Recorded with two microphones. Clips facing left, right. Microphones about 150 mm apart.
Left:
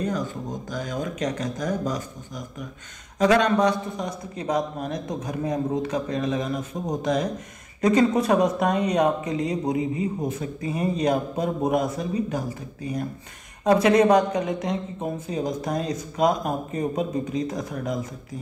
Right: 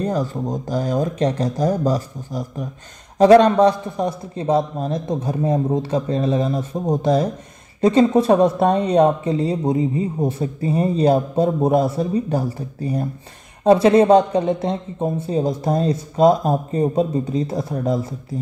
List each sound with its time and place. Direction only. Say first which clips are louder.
0.0 s speech: right 6 dB; 35° right (ahead or behind)